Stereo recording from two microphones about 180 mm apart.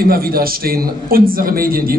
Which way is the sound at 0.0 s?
55° right (ahead or behind).